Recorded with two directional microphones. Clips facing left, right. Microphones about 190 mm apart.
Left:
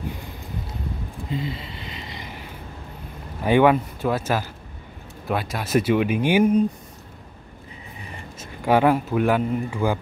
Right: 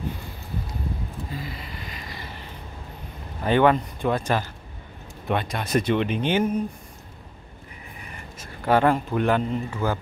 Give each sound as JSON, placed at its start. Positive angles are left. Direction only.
{"t": 1.3, "sound": "a sound", "side_deg": 25}
{"t": 3.4, "sound": "speech", "side_deg": 10}
{"t": 8.0, "sound": "vehicle", "side_deg": 25}
{"t": 8.6, "sound": "speech", "side_deg": 10}